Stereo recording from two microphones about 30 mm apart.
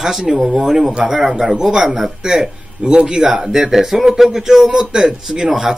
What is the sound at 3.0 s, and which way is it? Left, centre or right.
Speech, centre.